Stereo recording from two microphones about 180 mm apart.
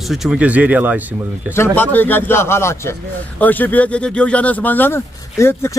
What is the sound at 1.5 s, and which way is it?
A man's voice, 10° left (ahead or behind).